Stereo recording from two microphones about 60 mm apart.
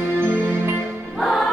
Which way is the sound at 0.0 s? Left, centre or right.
Right.